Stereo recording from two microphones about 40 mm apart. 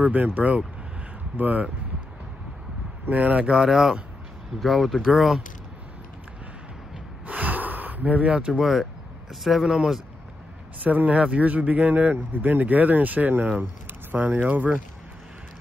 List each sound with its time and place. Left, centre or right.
0.0 s speech: right
3.1 s speech: right
3.6 s speech: centre
4.6 s speech: centre
7.2 s gasp: right
8.3 s speech: right
8.5 s speech: centre
10.8 s speech: right